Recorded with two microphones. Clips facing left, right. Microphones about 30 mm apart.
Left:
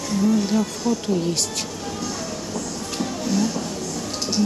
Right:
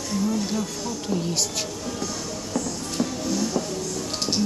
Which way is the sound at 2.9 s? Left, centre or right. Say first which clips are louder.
Left 3 dB; centre.